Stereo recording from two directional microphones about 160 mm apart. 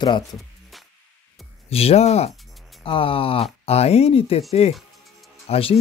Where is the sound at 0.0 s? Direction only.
25° left (ahead or behind).